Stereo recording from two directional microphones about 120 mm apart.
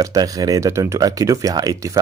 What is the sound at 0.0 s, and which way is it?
Speech, 30° right (ahead or behind).